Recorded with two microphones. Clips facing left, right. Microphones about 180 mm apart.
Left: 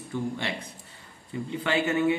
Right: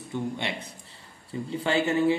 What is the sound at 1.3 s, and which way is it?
Speech, 30° right (ahead or behind).